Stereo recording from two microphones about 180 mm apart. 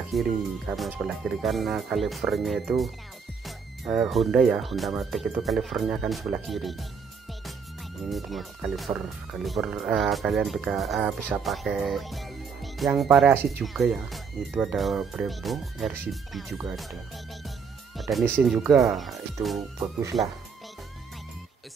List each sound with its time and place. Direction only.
0.1 s speech: centre (ahead or behind)
8.0 s speech: centre (ahead or behind)
13.3 s speech: 10° right (ahead or behind)
13.7 s speech: centre (ahead or behind)
17.9 s music: centre (ahead or behind)
18.4 s speech: centre (ahead or behind)